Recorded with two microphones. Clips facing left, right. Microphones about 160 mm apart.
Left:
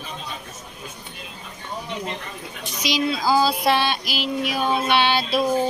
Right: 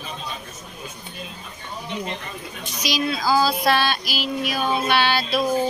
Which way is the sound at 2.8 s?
25° left (ahead or behind).